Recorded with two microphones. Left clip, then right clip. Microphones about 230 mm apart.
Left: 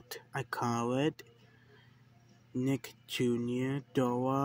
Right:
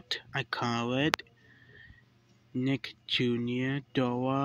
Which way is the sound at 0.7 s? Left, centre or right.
Centre.